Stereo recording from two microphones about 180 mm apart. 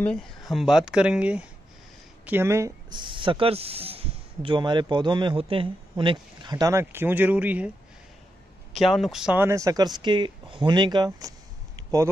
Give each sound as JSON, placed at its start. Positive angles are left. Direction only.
{"t": 0.0, "sound": "speech", "side_deg": 0}
{"t": 8.7, "sound": "speech", "side_deg": 0}